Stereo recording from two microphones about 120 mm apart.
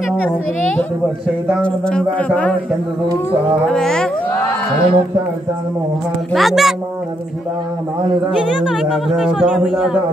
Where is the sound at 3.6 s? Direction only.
5° left (ahead or behind).